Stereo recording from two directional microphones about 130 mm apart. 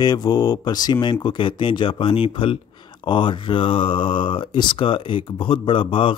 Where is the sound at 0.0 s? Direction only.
30° left (ahead or behind).